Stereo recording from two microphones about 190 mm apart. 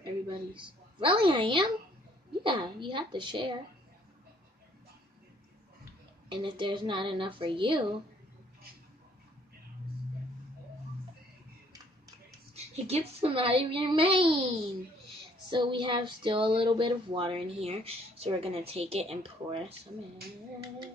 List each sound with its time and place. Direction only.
0.0 s a woman's voice: 25° right (ahead or behind)
6.2 s speech: 25° right (ahead or behind)
12.5 s speech: 35° right (ahead or behind)
15.5 s speech: 25° right (ahead or behind)